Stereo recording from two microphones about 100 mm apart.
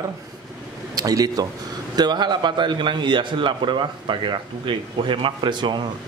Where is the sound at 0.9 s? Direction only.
40° right (ahead or behind).